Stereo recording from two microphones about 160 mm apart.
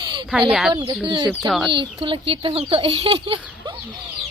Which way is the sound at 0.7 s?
30° right (ahead or behind).